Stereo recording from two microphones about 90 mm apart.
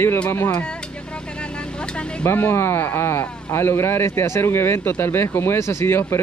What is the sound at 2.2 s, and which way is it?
Speech, 25° left (ahead or behind).